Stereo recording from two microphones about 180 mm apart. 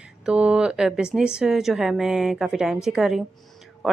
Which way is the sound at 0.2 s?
5° right (ahead or behind).